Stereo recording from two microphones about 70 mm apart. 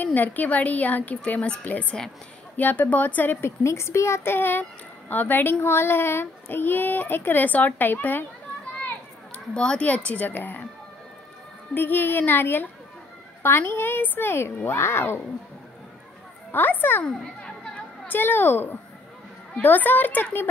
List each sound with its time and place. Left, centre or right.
0.0 s a woman's voice: left
9.3 s speech: centre
11.7 s a woman's voice: left
16.5 s speech: left
17.0 s a sound: centre
18.0 s speech: left